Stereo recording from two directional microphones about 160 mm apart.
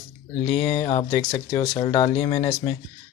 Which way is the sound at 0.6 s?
30° left (ahead or behind).